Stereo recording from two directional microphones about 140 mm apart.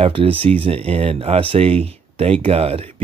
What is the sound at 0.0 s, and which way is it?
Speech, 40° right (ahead or behind).